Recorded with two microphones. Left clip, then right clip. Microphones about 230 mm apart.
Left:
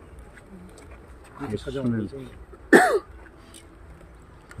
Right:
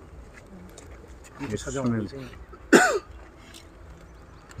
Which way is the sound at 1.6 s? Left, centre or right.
Centre.